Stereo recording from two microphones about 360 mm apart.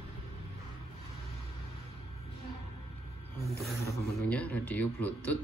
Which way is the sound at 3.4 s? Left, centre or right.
Centre.